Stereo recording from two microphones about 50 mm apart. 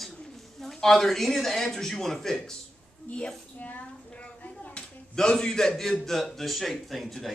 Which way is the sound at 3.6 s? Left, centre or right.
Left.